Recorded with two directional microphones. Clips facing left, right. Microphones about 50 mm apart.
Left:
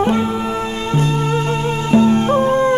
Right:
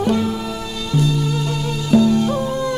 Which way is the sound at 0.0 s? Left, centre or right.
Left.